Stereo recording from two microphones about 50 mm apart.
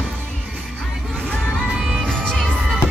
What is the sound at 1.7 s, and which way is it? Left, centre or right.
Music, centre.